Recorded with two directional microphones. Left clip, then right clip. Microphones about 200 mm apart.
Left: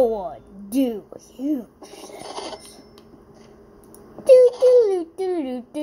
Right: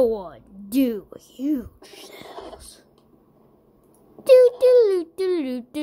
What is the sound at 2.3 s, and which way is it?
Filing, 30° left (ahead or behind).